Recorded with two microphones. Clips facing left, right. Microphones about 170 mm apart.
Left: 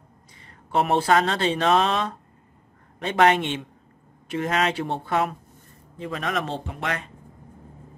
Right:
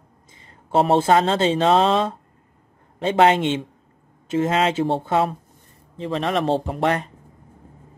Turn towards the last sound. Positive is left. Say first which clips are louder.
# right 8 dB
turn(degrees=-35)  # may be behind; listen again after turning